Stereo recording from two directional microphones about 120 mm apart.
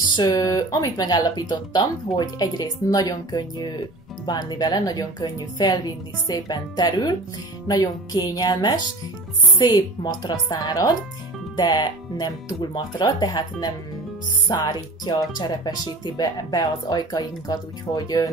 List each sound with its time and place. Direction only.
0.1 s speech: 35° left (ahead or behind)